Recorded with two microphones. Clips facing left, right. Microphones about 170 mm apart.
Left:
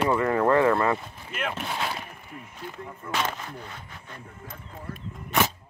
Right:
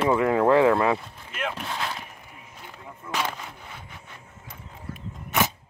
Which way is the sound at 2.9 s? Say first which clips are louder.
Even; 5° right (ahead or behind).